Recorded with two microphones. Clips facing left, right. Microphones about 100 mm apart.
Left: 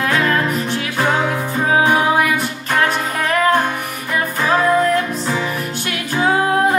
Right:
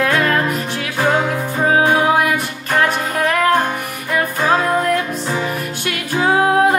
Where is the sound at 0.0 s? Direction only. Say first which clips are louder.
Right 1 dB; 50° right (ahead or behind).